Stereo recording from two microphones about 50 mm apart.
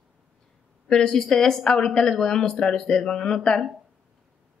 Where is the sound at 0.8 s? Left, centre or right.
Centre.